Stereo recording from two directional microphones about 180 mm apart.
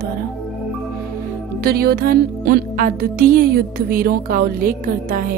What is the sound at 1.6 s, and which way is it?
Music, 60° right (ahead or behind).